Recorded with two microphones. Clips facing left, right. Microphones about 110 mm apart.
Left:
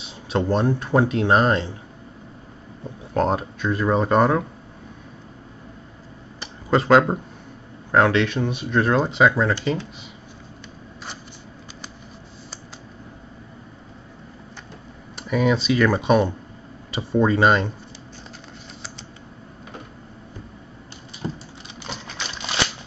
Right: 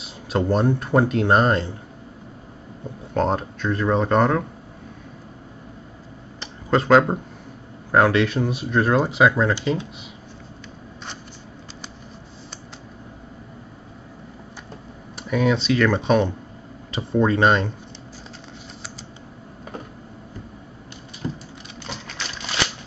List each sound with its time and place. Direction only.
0.0 s speech: 5° right (ahead or behind)
3.2 s speech: 5° left (ahead or behind)
6.4 s a sound: centre (ahead or behind)
7.9 s speech: 5° right (ahead or behind)
15.1 s speech: centre (ahead or behind)
21.2 s vehicle: 25° left (ahead or behind)
21.8 s typewriter: 10° left (ahead or behind)